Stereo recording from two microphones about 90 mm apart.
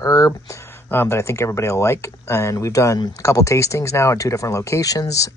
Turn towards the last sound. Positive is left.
turn(degrees=40)  # may be behind; listen again after turning